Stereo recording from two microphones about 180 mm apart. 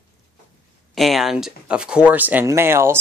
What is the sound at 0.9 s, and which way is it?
Speech, centre (ahead or behind).